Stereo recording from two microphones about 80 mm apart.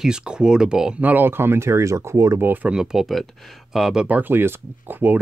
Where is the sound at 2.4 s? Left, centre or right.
Right.